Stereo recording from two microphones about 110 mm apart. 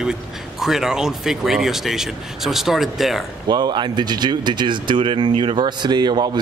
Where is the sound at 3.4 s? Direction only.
40° right (ahead or behind).